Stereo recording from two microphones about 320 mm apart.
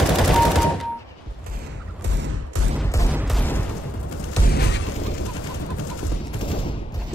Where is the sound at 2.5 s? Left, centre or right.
Right.